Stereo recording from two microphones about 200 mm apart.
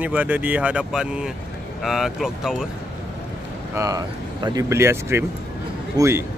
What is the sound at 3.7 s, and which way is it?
A man's voice, 15° right (ahead or behind).